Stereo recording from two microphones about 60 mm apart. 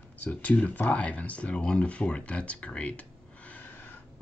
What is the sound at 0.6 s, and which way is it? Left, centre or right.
Speech, left.